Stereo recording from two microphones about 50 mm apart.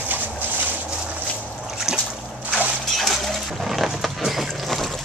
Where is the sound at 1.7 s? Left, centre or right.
Centre.